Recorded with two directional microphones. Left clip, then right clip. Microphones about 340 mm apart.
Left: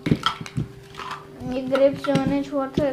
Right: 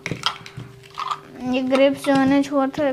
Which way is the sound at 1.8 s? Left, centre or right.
Right.